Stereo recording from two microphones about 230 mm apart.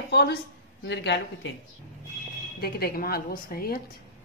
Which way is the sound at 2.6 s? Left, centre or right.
Left.